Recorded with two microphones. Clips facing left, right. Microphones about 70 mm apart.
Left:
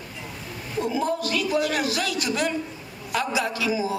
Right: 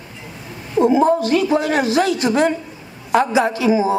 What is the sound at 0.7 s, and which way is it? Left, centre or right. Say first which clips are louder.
A man's voice: right 11 dB; right.